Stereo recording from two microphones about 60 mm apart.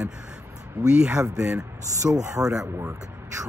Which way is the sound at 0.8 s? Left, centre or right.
Centre.